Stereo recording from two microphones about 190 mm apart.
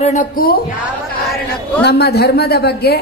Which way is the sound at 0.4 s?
50° left (ahead or behind).